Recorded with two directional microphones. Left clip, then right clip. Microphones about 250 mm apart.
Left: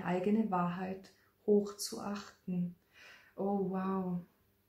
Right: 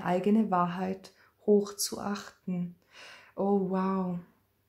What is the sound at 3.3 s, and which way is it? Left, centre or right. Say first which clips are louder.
Speech: right 7 dB; right.